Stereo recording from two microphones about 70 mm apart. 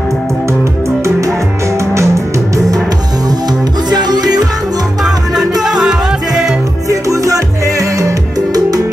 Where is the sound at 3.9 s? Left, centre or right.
Right.